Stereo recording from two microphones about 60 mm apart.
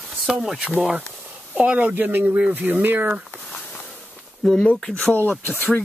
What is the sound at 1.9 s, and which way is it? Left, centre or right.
Speech, right.